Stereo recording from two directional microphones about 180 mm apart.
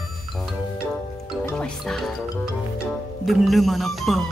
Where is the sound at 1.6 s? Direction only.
Centre (ahead or behind).